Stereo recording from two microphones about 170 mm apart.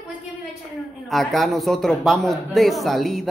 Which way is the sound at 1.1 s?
Centre (ahead or behind).